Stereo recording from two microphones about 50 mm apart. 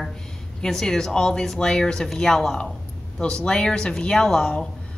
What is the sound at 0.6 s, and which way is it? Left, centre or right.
A woman's voice, centre.